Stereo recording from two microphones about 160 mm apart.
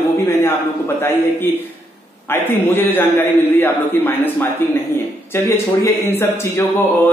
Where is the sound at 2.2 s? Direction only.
15° left (ahead or behind).